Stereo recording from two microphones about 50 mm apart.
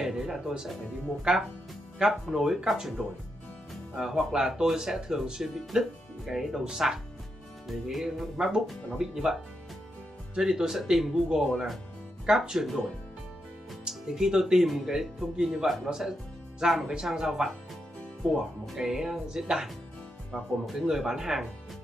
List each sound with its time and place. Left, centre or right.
0.0 s music: centre
1.3 s speech: centre
7.6 s music: centre
8.9 s speech: centre
11.4 s music: centre
12.3 s speech: centre
13.8 s speech: centre
15.5 s music: centre
15.9 s speech: centre
20.3 s music: centre
20.8 s speech: centre